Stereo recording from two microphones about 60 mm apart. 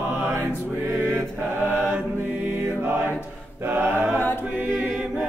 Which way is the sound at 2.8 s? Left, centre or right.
Right.